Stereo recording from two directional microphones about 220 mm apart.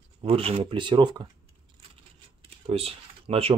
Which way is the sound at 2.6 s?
25° right (ahead or behind).